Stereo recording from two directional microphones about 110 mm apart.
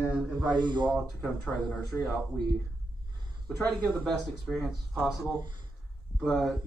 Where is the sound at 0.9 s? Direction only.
5° left (ahead or behind).